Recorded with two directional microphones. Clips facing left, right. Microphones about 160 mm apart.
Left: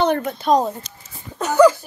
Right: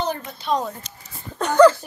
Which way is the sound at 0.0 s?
60° left (ahead or behind).